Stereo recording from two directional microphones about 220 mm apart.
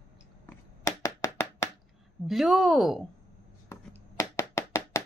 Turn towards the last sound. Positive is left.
turn(degrees=10)  # may be behind; listen again after turning